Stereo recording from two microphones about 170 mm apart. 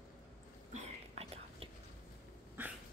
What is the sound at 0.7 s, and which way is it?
Whispering, 35° right (ahead or behind).